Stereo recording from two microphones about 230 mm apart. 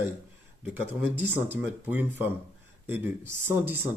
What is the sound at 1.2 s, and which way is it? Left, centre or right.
Speech, centre.